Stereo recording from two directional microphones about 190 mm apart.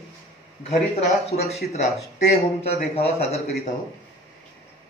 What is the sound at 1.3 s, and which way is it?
Speech, 35° left (ahead or behind).